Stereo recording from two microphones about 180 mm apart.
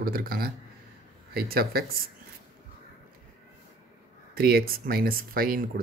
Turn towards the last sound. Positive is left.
turn(degrees=-55)  # may be behind; listen again after turning